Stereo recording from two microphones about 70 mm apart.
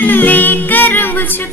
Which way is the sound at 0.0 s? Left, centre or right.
Left.